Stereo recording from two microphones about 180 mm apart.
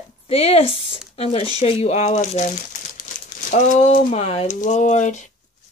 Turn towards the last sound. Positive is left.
turn(degrees=40)  # may be behind; listen again after turning